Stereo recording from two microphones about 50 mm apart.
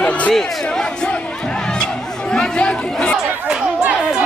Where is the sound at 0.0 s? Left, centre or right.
Left.